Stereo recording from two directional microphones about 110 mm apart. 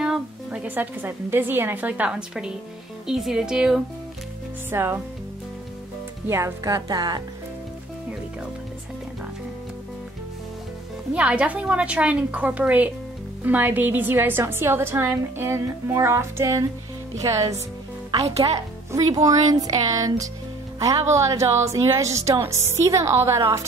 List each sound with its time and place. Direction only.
0.0 s a woman's voice: 10° right (ahead or behind)
4.6 s a woman's voice: 20° right (ahead or behind)
6.2 s speech: 25° right (ahead or behind)
11.1 s a woman's voice: 10° right (ahead or behind); by 23.6 s 25° right (ahead or behind)